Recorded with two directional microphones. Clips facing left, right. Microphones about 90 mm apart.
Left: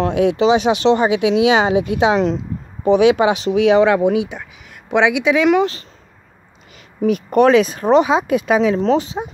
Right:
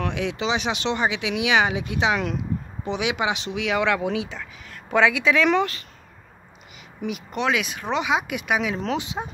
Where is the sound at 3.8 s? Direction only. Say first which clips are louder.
Left 9 dB; 25° left (ahead or behind).